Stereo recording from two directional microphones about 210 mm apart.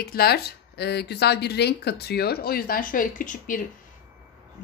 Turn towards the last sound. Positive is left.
turn(degrees=40)  # may be behind; listen again after turning